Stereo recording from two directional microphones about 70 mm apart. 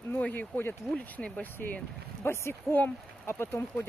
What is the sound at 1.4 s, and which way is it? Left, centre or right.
Speech, left.